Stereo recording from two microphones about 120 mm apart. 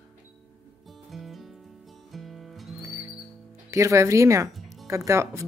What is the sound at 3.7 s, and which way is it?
Speech, 25° right (ahead or behind).